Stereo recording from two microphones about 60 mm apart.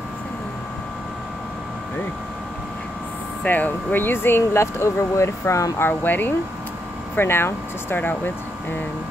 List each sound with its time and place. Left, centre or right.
3.4 s speech: left
5.8 s speech: left